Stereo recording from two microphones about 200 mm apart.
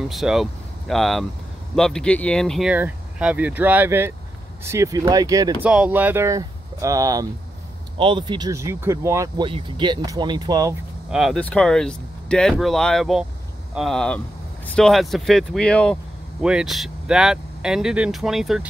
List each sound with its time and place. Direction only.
0.1 s speech: centre (ahead or behind); by 5.7 s 15° right (ahead or behind)
5.7 s speech: 5° right (ahead or behind)
11.1 s speech: centre (ahead or behind)